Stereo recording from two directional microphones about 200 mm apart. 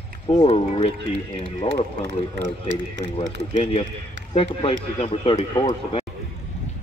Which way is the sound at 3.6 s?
30° left (ahead or behind).